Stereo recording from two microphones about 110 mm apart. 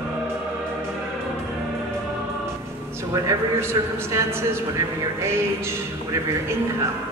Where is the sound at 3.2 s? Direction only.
25° right (ahead or behind).